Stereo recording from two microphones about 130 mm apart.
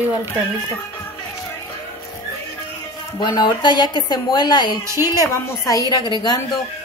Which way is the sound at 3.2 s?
35° left (ahead or behind).